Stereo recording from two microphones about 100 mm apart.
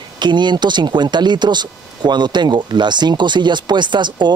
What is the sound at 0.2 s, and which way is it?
Speech, 50° right (ahead or behind).